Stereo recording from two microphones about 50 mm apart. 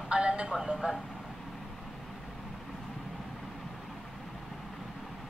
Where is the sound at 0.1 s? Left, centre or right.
Right.